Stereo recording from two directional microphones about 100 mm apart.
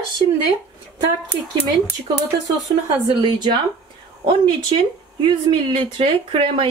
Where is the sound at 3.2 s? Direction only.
50° right (ahead or behind).